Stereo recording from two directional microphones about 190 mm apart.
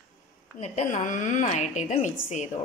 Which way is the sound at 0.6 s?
40° left (ahead or behind).